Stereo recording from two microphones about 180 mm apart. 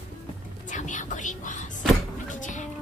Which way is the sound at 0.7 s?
45° left (ahead or behind).